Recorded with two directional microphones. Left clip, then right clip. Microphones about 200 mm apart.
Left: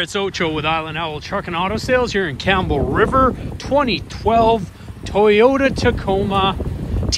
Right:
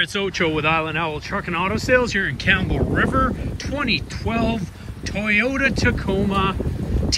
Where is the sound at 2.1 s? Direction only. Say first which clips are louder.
Left 2 dB; 15° left (ahead or behind).